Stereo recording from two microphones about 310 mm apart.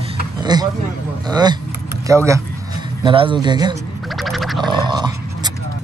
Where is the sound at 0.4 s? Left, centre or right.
Centre.